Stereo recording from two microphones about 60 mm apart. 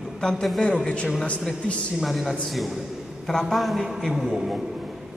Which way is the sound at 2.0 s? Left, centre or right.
Centre.